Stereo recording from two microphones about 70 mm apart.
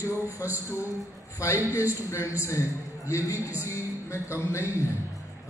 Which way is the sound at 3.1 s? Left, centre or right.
Left.